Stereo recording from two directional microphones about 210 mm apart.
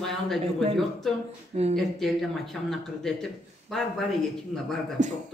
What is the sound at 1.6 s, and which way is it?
Speech, 30° right (ahead or behind).